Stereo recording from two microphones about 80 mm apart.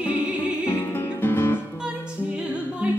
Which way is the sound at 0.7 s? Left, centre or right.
Left.